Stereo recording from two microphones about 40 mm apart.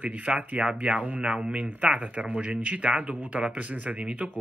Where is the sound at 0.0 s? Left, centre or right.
Right.